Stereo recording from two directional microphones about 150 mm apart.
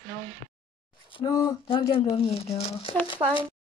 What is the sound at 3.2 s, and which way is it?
Speech, 30° right (ahead or behind).